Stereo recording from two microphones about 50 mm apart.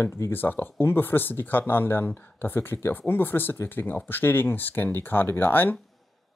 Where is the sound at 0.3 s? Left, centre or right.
Left.